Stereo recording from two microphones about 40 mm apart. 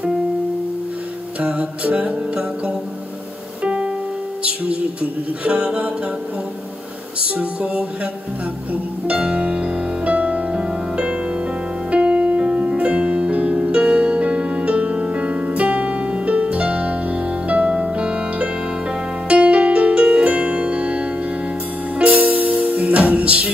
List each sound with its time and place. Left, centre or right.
1.4 s music: right
4.4 s speech: right
5.4 s a capella: right
7.2 s music: right